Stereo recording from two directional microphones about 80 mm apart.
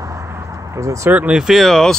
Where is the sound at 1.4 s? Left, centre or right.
Centre.